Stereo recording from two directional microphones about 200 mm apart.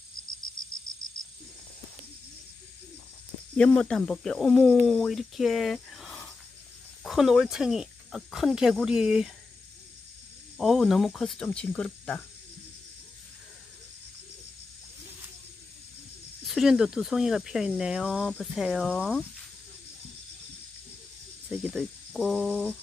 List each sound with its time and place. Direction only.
0.9 s cricket: 45° left (ahead or behind)
3.5 s speech: 5° left (ahead or behind)
10.6 s speech: centre (ahead or behind)
16.4 s speech: centre (ahead or behind)
21.5 s speech: centre (ahead or behind)